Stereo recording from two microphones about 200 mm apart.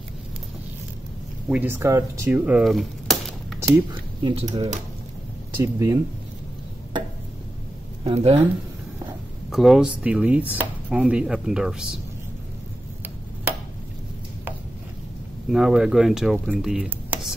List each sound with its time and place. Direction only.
1.5 s speech: 10° right (ahead or behind)
3.6 s speech: 20° right (ahead or behind)
4.5 s speech: 35° right (ahead or behind)
5.6 s speech: 15° right (ahead or behind)
8.0 s speech: 30° right (ahead or behind)
9.5 s speech: centre (ahead or behind)
15.5 s speech: 5° right (ahead or behind)